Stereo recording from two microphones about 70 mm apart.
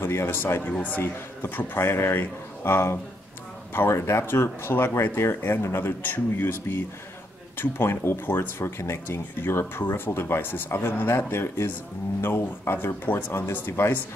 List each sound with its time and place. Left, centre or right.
0.0 s speech: left